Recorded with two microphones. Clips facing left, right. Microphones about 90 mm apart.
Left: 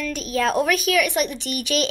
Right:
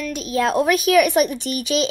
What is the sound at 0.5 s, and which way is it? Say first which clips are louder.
Speech: right 6 dB; 35° right (ahead or behind).